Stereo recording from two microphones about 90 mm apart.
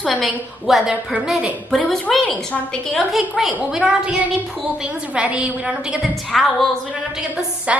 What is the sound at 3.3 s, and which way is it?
A woman's voice, 5° right (ahead or behind).